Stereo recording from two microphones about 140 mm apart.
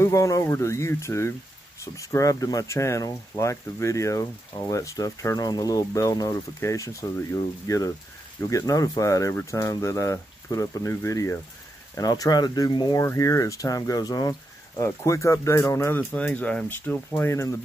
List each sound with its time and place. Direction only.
0.0 s speech: 20° left (ahead or behind)